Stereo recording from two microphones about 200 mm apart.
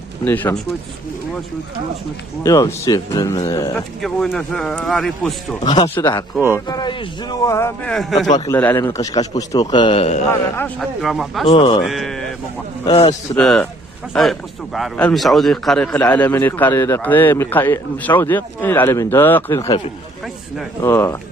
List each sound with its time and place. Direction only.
0.2 s a man's voice: 10° left (ahead or behind)
2.4 s a man's voice: 15° left (ahead or behind)
3.7 s speech: 5° left (ahead or behind)
5.6 s a man's voice: 25° left (ahead or behind); by 8.3 s centre (ahead or behind)
8.3 s a man's voice: 20° left (ahead or behind)
8.5 s a man's voice: 10° left (ahead or behind); by 10.2 s 30° left (ahead or behind)
10.3 s a man's voice: 10° left (ahead or behind)
11.0 s speech: centre (ahead or behind)
11.4 s a man's voice: 25° left (ahead or behind)
11.8 s speech: centre (ahead or behind)
12.8 s a man's voice: 25° left (ahead or behind)
13.4 s a man's voice: 5° left (ahead or behind)
20.8 s a man's voice: 10° left (ahead or behind)